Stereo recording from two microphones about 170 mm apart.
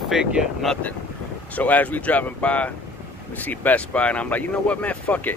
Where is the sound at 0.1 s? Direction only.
5° right (ahead or behind).